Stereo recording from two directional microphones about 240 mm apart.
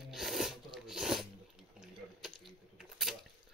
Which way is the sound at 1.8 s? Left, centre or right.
Centre.